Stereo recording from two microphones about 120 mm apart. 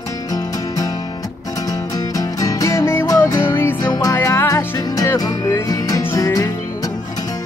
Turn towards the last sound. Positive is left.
turn(degrees=25)  # may be behind; listen again after turning